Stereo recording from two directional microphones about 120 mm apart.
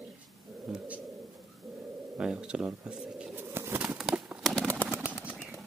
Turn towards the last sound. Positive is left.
turn(degrees=-10)  # may be behind; listen again after turning